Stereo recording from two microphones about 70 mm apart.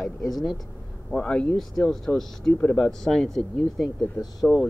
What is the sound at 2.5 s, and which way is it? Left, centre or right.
Speech, left.